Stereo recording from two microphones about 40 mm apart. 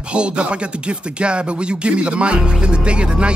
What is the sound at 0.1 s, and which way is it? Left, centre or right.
Speech, right.